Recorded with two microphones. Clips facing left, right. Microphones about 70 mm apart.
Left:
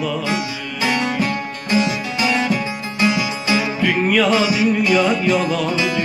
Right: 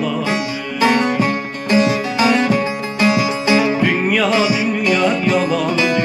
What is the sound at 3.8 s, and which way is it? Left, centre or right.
Music, centre.